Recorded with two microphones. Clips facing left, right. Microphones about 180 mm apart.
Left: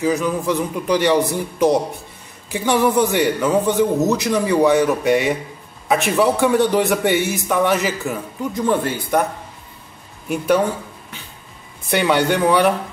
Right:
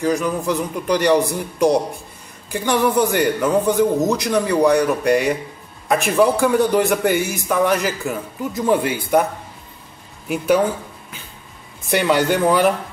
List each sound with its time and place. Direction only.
0.0 s speech: centre (ahead or behind)